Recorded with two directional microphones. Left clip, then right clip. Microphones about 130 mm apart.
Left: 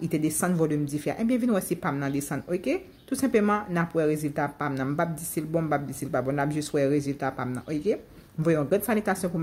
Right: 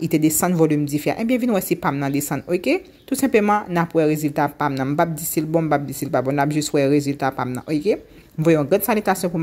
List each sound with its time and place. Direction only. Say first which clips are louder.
0.0 s a woman's voice: right 8 dB; 25° right (ahead or behind)